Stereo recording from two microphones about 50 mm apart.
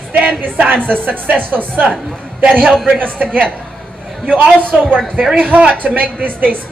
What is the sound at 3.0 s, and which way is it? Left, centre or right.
Speech, right.